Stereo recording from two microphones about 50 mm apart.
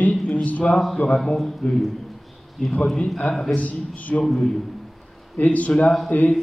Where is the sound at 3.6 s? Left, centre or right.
Left.